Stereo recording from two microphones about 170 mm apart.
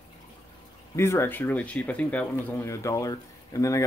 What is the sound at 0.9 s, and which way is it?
Speech, 15° left (ahead or behind).